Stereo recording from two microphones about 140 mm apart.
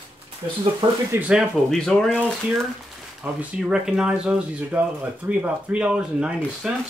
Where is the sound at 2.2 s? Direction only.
10° right (ahead or behind).